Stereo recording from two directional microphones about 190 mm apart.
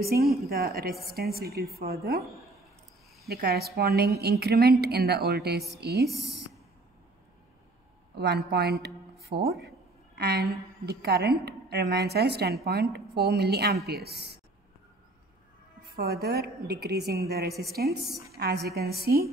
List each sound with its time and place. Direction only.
0.4 s a woman's voice: 55° right (ahead or behind)
3.3 s a woman's voice: 55° right (ahead or behind)
6.0 s speech: centre (ahead or behind)
8.2 s a woman's voice: 60° right (ahead or behind)
15.9 s a woman's voice: 55° right (ahead or behind)
17.5 s a woman's voice: 15° right (ahead or behind)
18.4 s a woman's voice: 60° right (ahead or behind)